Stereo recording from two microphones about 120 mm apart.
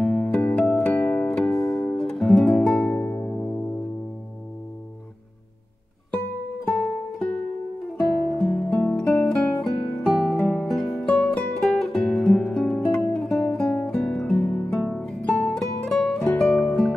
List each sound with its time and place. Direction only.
0.0 s music: 10° left (ahead or behind)
1.5 s music: 25° left (ahead or behind)
1.9 s music: 5° left (ahead or behind)
3.0 s music: 20° left (ahead or behind)
8.4 s music: 10° left (ahead or behind)